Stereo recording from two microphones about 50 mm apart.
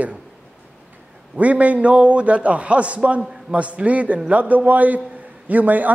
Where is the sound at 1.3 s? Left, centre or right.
Right.